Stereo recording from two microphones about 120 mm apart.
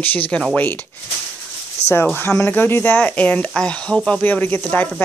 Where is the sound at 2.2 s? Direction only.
20° left (ahead or behind).